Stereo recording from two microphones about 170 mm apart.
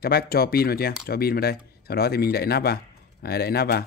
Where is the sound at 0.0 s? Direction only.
65° left (ahead or behind).